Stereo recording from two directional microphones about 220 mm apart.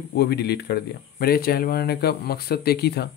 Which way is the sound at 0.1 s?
50° left (ahead or behind).